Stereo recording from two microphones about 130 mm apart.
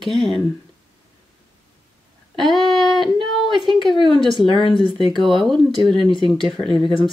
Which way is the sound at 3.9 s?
40° left (ahead or behind).